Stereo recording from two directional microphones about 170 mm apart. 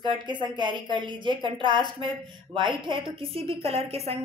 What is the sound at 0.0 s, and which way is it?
A woman's voice, 25° right (ahead or behind).